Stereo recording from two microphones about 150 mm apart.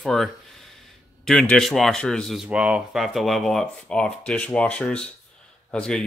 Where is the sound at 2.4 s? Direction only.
5° right (ahead or behind).